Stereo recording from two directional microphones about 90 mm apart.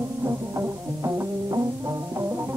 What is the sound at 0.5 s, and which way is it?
Music, 35° right (ahead or behind).